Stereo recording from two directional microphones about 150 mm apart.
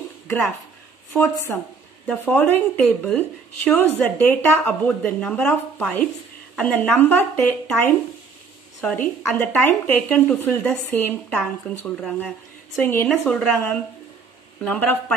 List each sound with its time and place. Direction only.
1.3 s speech: 20° left (ahead or behind)